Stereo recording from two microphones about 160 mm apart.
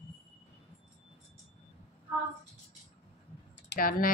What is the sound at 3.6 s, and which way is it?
Speech, 65° left (ahead or behind).